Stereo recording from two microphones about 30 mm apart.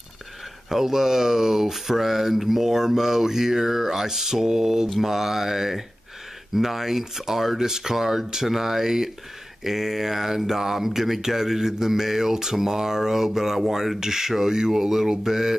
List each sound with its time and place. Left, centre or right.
0.7 s speech: centre